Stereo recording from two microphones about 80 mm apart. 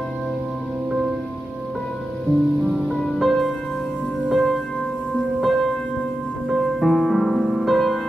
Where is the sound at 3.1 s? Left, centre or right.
Centre.